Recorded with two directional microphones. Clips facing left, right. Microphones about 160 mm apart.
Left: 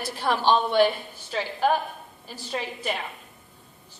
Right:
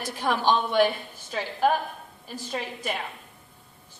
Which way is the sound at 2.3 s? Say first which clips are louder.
Left 1 dB; centre (ahead or behind).